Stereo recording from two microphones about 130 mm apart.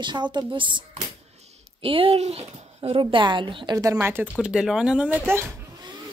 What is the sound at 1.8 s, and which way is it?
A woman's voice, 45° right (ahead or behind).